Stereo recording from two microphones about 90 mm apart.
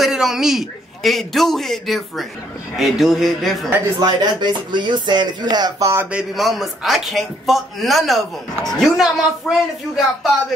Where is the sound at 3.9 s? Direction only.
50° right (ahead or behind).